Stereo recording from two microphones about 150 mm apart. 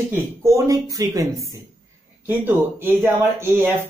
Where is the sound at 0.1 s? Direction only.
20° right (ahead or behind).